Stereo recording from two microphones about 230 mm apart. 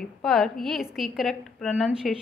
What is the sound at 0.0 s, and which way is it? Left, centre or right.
A woman's voice, centre.